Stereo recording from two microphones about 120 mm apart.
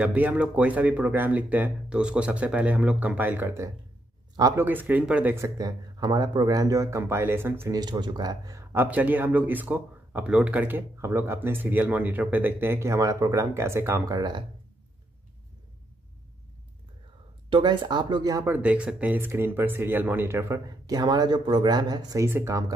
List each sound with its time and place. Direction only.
0.0 s speech: 10° right (ahead or behind)
5.3 s speech: 25° right (ahead or behind)
7.7 s speech: 35° right (ahead or behind)
8.7 s speech: 15° right (ahead or behind); by 14.4 s 35° right (ahead or behind)
17.5 s speech: 40° right (ahead or behind)
18.5 s speech: 10° right (ahead or behind); by 22.2 s 35° right (ahead or behind)
22.2 s speech: 20° right (ahead or behind)